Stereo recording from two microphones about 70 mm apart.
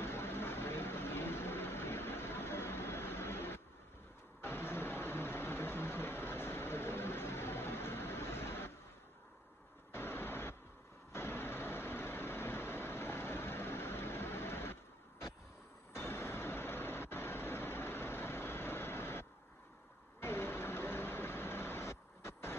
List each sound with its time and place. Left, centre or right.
0.0 s vehicle: left
9.9 s a sound: left
11.1 s vehicle: left